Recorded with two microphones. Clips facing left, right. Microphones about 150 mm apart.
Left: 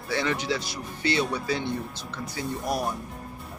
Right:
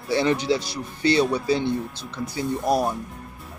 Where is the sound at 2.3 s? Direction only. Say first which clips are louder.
Right 7 dB; 30° right (ahead or behind).